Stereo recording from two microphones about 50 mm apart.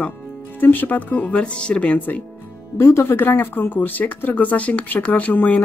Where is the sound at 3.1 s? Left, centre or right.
Left.